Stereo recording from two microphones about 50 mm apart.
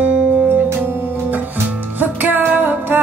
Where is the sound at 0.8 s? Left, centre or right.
Right.